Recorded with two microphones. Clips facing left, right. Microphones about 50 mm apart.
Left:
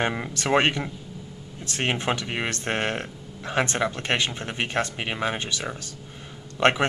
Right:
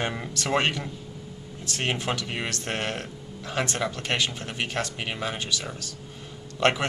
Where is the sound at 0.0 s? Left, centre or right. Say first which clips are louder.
Left 3 dB; left.